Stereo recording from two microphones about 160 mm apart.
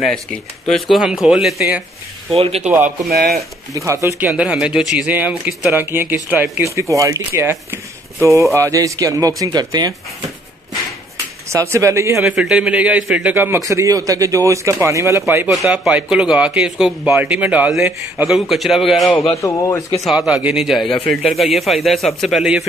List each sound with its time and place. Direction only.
0.7 s speech: centre (ahead or behind)
2.3 s a man's voice: 40° right (ahead or behind)
2.6 s speech: 5° right (ahead or behind)
3.1 s speech: 75° right (ahead or behind)
3.7 s a man's voice: 20° right (ahead or behind)
4.2 s a man's voice: 5° right (ahead or behind); by 9.9 s 25° right (ahead or behind)
11.4 s a man's voice: 15° right (ahead or behind)
15.5 s speech: centre (ahead or behind)
19.4 s speech: 20° left (ahead or behind)
20.1 s speech: 5° right (ahead or behind)